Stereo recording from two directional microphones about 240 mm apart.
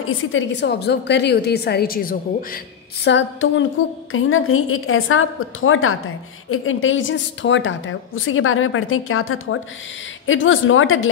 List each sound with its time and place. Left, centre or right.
0.3 s a woman's voice: left